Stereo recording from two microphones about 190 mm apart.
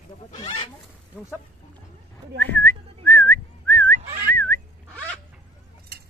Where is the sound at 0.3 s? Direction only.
25° left (ahead or behind).